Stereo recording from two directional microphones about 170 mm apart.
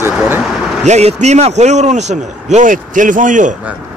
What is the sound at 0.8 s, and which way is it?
A man's voice, 40° right (ahead or behind).